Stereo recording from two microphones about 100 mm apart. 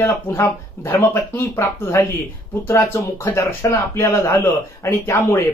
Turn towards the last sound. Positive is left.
turn(degrees=30)  # may be behind; listen again after turning